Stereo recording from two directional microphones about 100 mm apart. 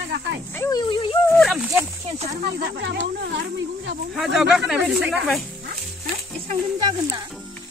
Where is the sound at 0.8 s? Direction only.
55° left (ahead or behind).